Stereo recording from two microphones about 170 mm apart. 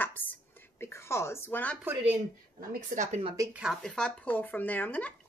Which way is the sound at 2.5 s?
45° right (ahead or behind).